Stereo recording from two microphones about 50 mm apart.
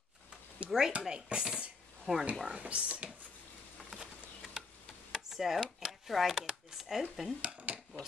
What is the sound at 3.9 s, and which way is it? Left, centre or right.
Insect, centre.